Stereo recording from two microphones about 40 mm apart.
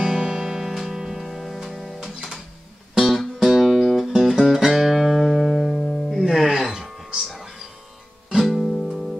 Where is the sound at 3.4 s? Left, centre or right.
Centre.